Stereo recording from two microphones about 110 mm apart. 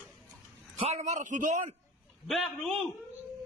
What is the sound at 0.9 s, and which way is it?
Speech, 90° right.